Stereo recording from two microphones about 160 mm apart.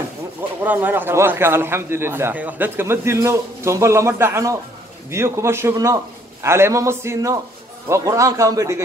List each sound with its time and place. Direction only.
0.4 s a man's voice: 10° right (ahead or behind)